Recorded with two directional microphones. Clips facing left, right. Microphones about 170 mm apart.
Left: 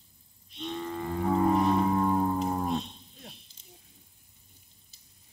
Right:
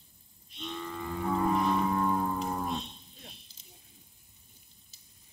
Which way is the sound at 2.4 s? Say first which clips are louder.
Left 4 dB; 20° left (ahead or behind).